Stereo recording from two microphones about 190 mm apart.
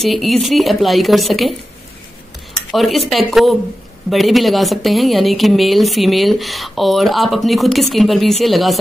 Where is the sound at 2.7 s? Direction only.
Centre (ahead or behind).